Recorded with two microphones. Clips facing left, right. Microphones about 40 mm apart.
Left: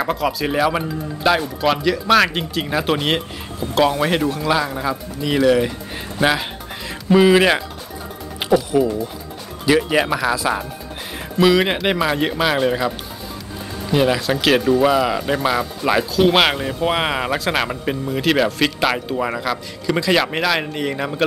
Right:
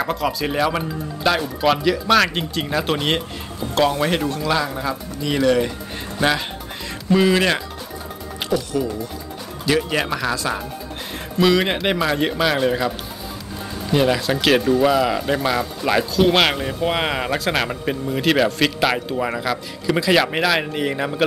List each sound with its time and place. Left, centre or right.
0.0 s speech: centre; by 8.7 s left
9.7 s speech: centre